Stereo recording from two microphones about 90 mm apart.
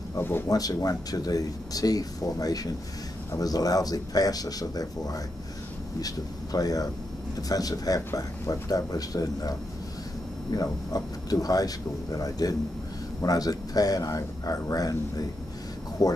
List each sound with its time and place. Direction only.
0.2 s speech: 25° left (ahead or behind)
0.5 s speech: 40° left (ahead or behind)